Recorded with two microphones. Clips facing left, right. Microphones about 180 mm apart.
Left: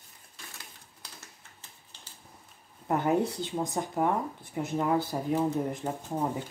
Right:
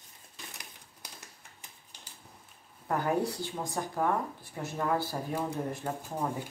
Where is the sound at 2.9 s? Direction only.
20° left (ahead or behind).